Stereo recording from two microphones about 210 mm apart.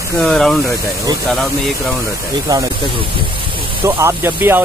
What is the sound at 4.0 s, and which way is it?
Speech, 10° right (ahead or behind).